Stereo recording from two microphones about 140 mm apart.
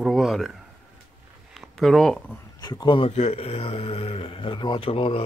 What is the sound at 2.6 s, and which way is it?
Speech, 30° left (ahead or behind).